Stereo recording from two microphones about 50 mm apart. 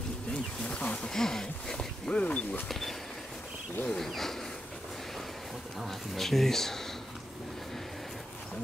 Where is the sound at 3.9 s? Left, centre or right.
Centre.